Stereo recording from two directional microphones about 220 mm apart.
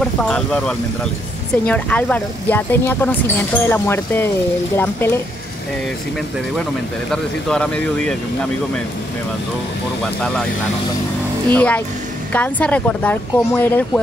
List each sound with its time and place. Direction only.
0.0 s speech: 5° left (ahead or behind)
7.1 s speech: 5° left (ahead or behind)
11.5 s speech: 5° left (ahead or behind)